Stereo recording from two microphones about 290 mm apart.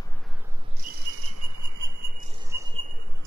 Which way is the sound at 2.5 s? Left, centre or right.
Centre.